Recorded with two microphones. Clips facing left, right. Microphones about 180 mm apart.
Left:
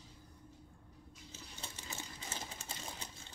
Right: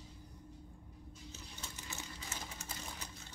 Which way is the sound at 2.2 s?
30° left (ahead or behind).